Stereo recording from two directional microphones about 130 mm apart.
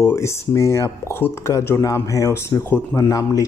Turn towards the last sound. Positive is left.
turn(degrees=25)  # may be behind; listen again after turning